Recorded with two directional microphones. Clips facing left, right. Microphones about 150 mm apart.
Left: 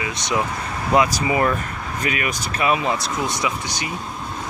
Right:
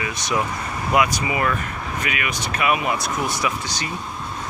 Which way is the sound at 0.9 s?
35° left (ahead or behind).